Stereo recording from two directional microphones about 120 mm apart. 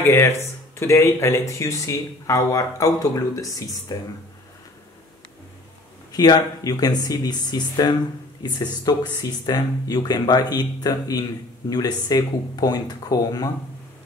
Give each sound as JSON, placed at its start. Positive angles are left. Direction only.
{"t": 0.0, "sound": "speech", "side_deg": 20}
{"t": 6.1, "sound": "speech", "side_deg": 35}